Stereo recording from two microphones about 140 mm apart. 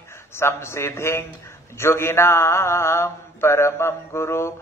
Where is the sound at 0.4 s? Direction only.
20° left (ahead or behind).